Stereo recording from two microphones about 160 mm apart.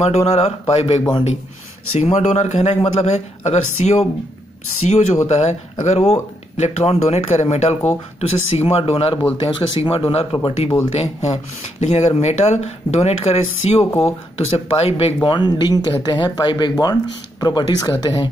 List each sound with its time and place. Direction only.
0.3 s speech: 40° left (ahead or behind)
13.8 s speech: 15° left (ahead or behind)
14.7 s speech: 35° left (ahead or behind)